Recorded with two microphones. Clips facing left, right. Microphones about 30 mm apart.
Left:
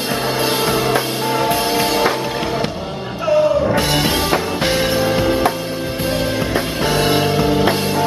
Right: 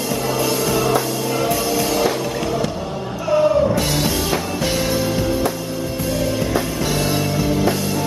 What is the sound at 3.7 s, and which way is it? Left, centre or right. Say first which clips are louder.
Music: left 3 dB; left.